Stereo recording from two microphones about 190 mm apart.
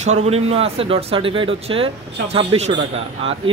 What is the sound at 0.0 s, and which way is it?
Speech, 35° right (ahead or behind).